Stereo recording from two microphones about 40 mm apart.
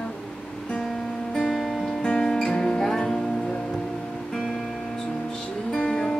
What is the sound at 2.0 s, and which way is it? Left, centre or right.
Music, left.